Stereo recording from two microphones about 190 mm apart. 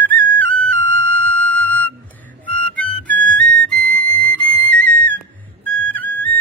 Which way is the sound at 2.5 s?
10° left (ahead or behind).